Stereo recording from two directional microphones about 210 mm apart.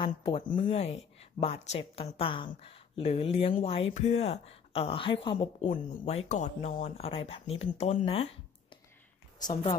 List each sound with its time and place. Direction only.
0.0 s a woman's voice: 25° left (ahead or behind)
5.7 s speech: 35° left (ahead or behind)
9.5 s speech: 35° left (ahead or behind)